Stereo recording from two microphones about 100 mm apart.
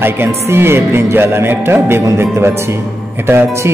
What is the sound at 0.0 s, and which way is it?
Speech, 25° right (ahead or behind).